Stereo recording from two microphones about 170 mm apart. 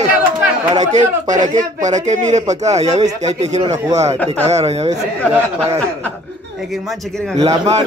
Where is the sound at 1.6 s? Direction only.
45° right (ahead or behind).